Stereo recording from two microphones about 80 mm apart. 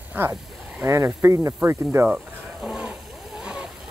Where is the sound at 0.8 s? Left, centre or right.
Right.